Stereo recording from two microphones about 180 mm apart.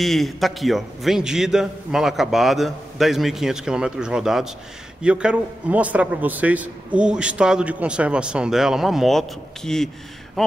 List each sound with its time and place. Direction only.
0.0 s a man's voice: centre (ahead or behind)